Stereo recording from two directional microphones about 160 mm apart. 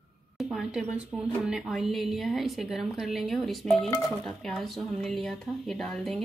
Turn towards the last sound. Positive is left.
turn(degrees=0)  # may be behind; listen again after turning